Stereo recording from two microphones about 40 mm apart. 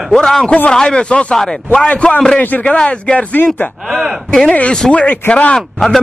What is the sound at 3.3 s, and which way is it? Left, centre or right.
Speech, left.